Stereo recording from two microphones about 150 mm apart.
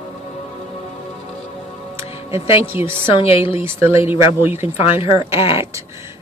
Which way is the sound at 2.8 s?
40° left (ahead or behind).